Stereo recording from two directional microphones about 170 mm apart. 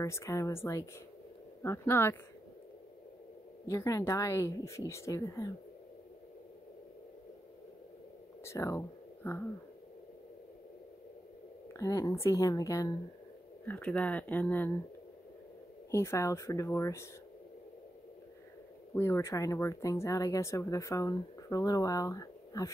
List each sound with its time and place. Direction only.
0.0 s speech: 15° left (ahead or behind)
3.6 s speech: 20° left (ahead or behind)
8.5 s speech: 15° left (ahead or behind)
11.7 s speech: 20° left (ahead or behind)
13.7 s speech: 5° left (ahead or behind)
15.9 s speech: 15° left (ahead or behind)
18.9 s speech: 15° left (ahead or behind)